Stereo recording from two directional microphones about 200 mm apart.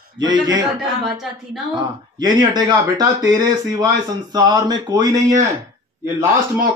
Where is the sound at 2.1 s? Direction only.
20° right (ahead or behind).